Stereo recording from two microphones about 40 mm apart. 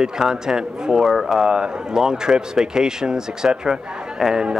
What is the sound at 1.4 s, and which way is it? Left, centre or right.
Speech, centre.